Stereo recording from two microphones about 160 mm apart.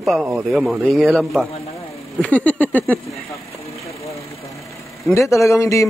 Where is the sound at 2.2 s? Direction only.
10° left (ahead or behind).